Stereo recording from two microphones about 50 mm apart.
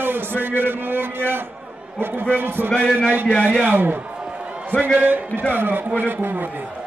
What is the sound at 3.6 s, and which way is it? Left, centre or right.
A man's voice, right.